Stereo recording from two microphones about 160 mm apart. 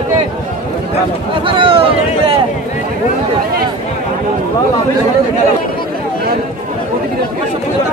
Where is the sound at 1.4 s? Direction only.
35° right (ahead or behind).